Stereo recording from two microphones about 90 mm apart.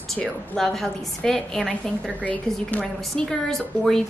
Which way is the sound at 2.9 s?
5° left (ahead or behind).